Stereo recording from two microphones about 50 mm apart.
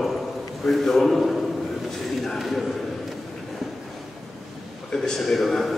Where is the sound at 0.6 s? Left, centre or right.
Centre.